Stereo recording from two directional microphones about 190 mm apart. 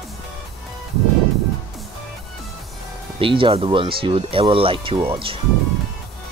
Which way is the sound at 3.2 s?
25° right (ahead or behind).